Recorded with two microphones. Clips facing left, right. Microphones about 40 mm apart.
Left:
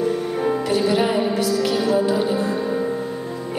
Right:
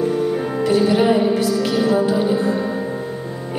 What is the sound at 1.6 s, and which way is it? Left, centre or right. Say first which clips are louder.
Music: right 2 dB; right.